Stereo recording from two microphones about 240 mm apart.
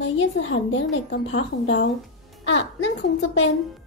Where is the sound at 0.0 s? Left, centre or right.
Left.